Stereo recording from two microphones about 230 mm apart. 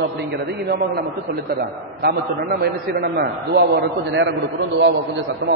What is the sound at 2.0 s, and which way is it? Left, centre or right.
A man's voice, right.